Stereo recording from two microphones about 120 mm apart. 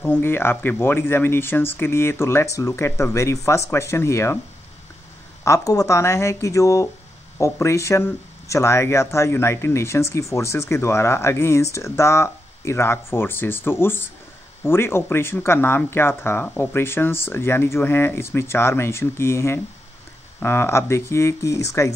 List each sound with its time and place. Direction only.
0.0 s speech: 15° left (ahead or behind)
5.4 s speech: 25° left (ahead or behind)